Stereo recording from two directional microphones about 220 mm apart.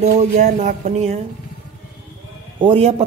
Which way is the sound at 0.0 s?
30° right (ahead or behind).